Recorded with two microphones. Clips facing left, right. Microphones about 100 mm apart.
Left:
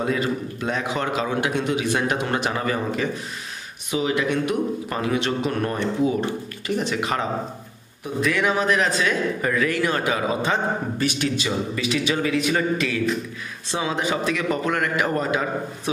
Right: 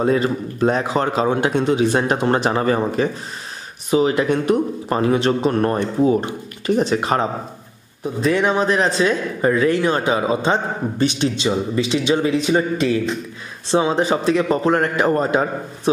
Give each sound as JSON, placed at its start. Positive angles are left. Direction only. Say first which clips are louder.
{"t": 0.0, "sound": "a man's voice", "louder": "right 6 dB", "side_deg": -35}
{"t": 6.8, "sound": "a man's voice", "louder": "right 6 dB", "side_deg": -35}